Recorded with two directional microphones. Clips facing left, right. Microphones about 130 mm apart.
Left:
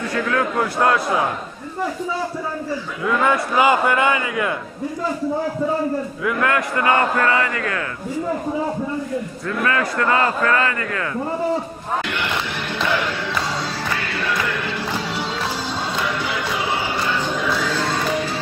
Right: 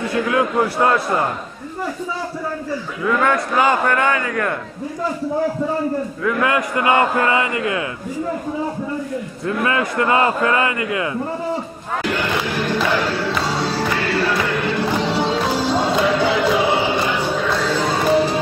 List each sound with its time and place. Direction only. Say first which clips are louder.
0.3 s a man's voice: right 3 dB; 10° right (ahead or behind)
3.1 s a man's voice: right 1 dB; 5° left (ahead or behind)
6.4 s a man's voice: even; 10° right (ahead or behind)
9.6 s a man's voice: right 1 dB; 20° right (ahead or behind)
12.1 s music: right 4 dB; 40° right (ahead or behind)
13.3 s music: right 4 dB; 30° right (ahead or behind)
15.5 s music: right 8 dB; 80° right
16.2 s music: right 8 dB; 30° right (ahead or behind); by 17.4 s 15° right (ahead or behind)
17.4 s a sound: right 3 dB; centre (ahead or behind)
18.1 s music: right 7 dB; 40° right (ahead or behind)